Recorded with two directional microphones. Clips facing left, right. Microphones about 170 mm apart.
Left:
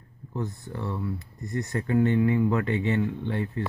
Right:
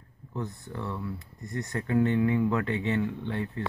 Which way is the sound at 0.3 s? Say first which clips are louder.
Left 3 dB; 5° left (ahead or behind).